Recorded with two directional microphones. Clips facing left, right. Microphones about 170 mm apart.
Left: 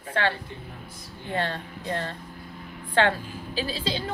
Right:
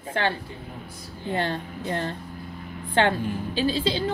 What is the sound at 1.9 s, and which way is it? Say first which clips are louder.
A woman's voice: right 2 dB; 25° right (ahead or behind).